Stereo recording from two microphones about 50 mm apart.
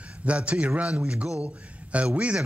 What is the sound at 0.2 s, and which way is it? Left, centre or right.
A man's voice, right.